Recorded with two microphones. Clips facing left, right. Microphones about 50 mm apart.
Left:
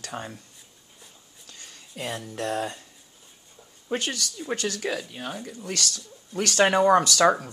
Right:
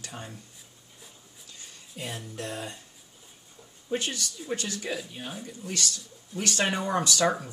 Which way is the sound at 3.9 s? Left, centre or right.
Left.